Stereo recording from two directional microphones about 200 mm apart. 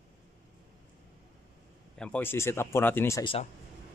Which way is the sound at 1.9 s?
5° left (ahead or behind).